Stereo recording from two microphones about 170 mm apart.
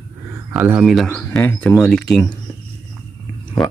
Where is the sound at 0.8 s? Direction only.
5° left (ahead or behind).